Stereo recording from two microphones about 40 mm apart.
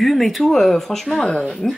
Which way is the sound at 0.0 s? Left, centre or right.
Centre.